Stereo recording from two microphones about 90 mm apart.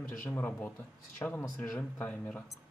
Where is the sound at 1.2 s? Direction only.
35° left (ahead or behind).